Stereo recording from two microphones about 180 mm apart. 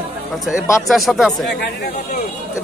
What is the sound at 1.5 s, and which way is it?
Speech, 65° left (ahead or behind).